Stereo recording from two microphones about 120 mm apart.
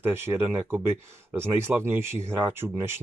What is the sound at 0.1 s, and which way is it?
Speech, 20° right (ahead or behind).